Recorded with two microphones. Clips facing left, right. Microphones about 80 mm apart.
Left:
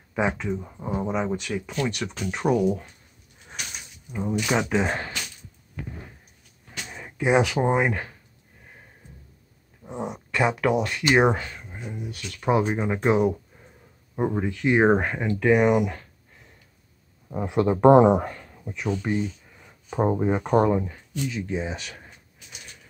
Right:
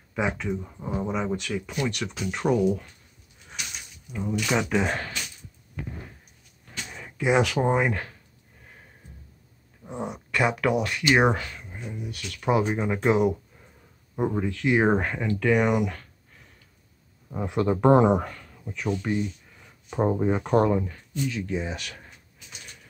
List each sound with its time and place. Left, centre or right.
0.1 s speech: left
0.6 s speech: centre
4.4 s speech: centre
6.9 s speech: centre
9.8 s speech: left
12.6 s speech: centre
14.1 s speech: centre
17.5 s speech: left
18.2 s a sound: left
18.7 s speech: centre